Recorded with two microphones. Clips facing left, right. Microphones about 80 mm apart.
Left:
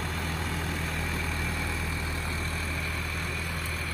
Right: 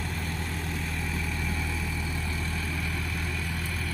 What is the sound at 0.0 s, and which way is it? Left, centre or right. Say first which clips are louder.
Vehicle: left 1 dB; left.